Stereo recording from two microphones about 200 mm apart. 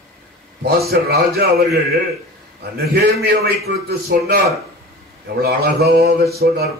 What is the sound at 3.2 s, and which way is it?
A man's voice, 50° right (ahead or behind).